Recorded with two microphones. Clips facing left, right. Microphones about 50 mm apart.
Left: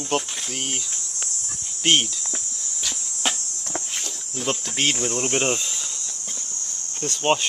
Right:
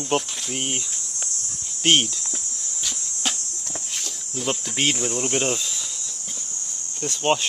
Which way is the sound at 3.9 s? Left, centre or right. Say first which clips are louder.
Even; centre.